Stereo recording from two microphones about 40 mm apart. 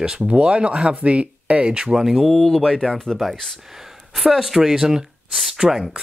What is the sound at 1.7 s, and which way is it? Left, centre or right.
Speech, centre.